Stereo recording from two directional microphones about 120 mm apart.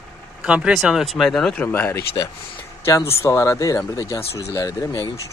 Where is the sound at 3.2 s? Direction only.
20° left (ahead or behind).